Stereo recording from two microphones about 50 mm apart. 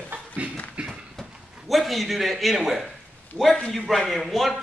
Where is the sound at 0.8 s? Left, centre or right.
Right.